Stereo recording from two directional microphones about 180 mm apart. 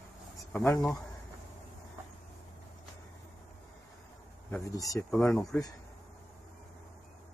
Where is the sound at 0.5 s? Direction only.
10° left (ahead or behind).